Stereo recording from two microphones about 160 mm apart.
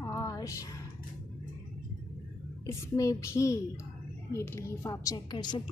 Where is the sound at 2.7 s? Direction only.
20° left (ahead or behind).